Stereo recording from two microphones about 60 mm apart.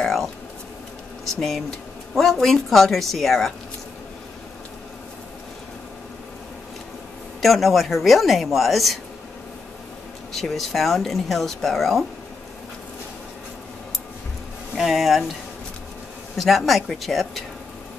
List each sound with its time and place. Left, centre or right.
0.0 s a sound: centre
1.2 s speech: centre
7.4 s speech: centre
10.3 s speech: centre
14.8 s speech: centre
16.3 s speech: centre